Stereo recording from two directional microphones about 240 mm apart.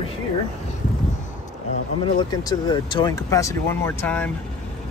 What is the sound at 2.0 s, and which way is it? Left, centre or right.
Speech, centre.